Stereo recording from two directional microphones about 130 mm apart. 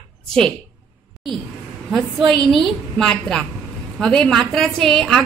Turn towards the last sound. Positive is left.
turn(degrees=5)  # may be behind; listen again after turning